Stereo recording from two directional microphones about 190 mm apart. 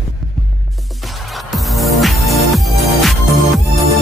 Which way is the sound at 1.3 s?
Centre (ahead or behind).